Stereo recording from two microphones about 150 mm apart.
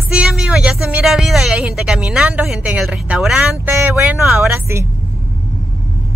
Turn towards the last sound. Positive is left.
turn(degrees=-5)  # may be behind; listen again after turning